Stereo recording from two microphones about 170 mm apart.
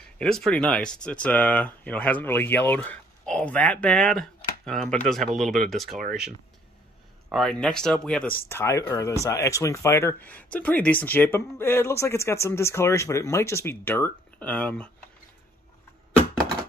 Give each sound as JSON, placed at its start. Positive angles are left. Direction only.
{"t": 0.0, "sound": "speech", "side_deg": 5}
{"t": 7.2, "sound": "speech", "side_deg": 0}